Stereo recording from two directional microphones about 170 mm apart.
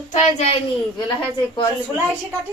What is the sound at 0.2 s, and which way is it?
Speech, 35° left (ahead or behind).